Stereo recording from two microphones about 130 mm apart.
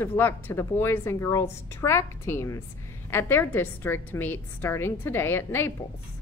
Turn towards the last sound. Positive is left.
turn(degrees=15)  # may be behind; listen again after turning